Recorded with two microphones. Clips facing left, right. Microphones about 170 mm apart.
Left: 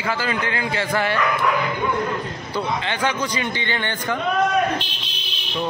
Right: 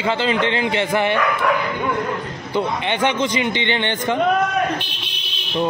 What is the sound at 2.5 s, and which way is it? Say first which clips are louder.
A man's voice: right 4 dB; 20° right (ahead or behind).